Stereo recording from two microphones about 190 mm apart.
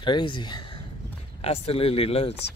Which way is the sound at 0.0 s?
25° left (ahead or behind).